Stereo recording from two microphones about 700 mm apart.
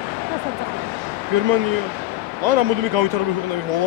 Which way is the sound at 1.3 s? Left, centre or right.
Right.